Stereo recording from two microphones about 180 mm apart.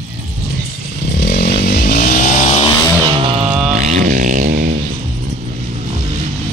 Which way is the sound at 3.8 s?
40° right (ahead or behind).